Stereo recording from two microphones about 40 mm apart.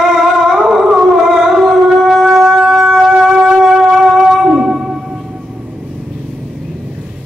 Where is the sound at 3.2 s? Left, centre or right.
Centre.